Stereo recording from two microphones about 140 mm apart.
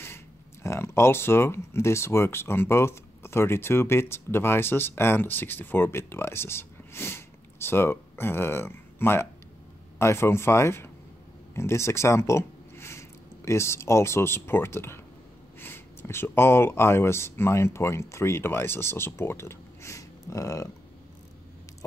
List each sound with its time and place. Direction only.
0.0 s speech: 20° left (ahead or behind)